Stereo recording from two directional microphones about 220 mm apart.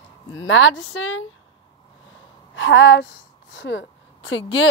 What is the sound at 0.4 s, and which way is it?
Speech, 60° left (ahead or behind).